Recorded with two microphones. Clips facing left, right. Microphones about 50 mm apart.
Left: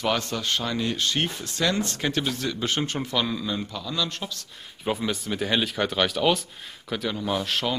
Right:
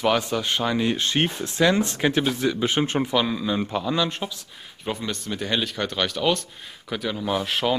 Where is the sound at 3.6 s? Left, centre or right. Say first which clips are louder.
Right 6 dB; right.